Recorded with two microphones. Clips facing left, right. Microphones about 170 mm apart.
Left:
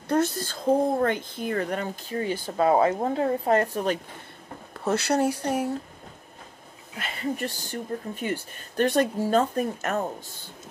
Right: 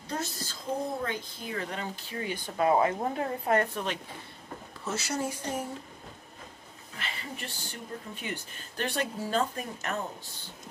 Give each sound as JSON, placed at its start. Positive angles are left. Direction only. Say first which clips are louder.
{"t": 0.1, "sound": "a woman's voice", "louder": "left 11 dB", "side_deg": 60}
{"t": 4.7, "sound": "speech", "louder": "left 9 dB", "side_deg": 60}
{"t": 7.0, "sound": "speech", "louder": "left 10 dB", "side_deg": 45}